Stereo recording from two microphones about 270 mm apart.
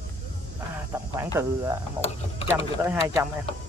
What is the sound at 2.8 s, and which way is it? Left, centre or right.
Speech, centre.